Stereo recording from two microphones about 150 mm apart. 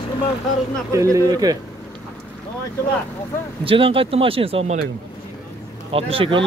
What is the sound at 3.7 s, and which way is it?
Speech, 35° right (ahead or behind).